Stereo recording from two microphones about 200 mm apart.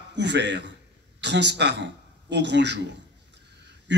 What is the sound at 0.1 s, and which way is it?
Speech, 60° right (ahead or behind).